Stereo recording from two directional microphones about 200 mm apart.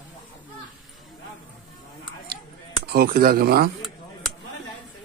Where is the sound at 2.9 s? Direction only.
50° right (ahead or behind).